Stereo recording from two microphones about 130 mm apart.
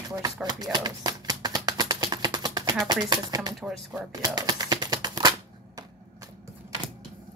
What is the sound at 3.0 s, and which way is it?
Speech, 35° right (ahead or behind).